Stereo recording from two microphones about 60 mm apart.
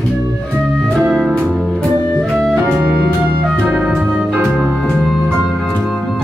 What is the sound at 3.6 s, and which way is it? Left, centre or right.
Music, right.